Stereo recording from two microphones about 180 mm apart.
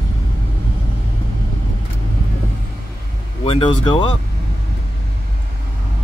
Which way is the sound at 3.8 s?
25° left (ahead or behind).